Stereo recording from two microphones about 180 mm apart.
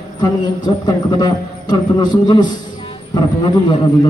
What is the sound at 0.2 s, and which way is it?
A man's voice, 20° left (ahead or behind).